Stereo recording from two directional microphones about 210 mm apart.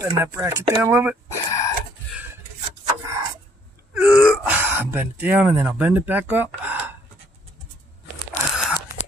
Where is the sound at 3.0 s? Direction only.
15° right (ahead or behind).